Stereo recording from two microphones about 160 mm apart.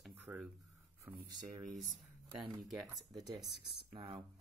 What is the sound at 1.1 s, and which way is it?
Speech, 10° right (ahead or behind).